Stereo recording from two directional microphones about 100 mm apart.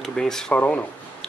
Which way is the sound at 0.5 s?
20° left (ahead or behind).